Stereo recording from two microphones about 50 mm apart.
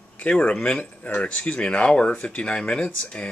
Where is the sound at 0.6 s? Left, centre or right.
Left.